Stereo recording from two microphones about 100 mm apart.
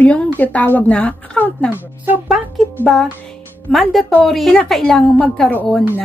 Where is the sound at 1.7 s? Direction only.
20° right (ahead or behind).